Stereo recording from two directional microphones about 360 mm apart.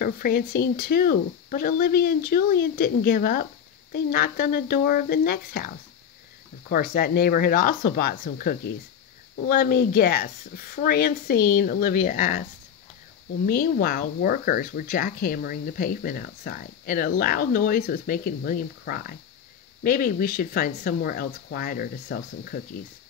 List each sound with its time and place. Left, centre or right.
0.0 s speech: left
6.7 s speech: left
13.5 s speech: left